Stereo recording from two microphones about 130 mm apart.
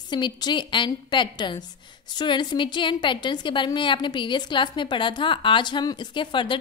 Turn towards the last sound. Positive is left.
turn(degrees=40)  # may be behind; listen again after turning